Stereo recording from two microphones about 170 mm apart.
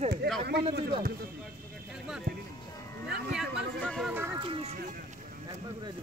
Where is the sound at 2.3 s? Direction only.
65° right (ahead or behind).